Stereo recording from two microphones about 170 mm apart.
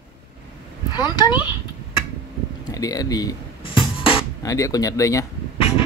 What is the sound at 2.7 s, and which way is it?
Music, 20° left (ahead or behind).